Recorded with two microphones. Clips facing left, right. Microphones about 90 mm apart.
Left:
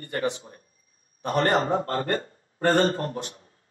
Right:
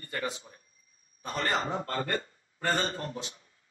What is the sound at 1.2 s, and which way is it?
Speech, 55° left (ahead or behind).